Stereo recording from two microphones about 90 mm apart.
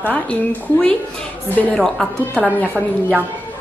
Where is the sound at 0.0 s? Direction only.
15° left (ahead or behind).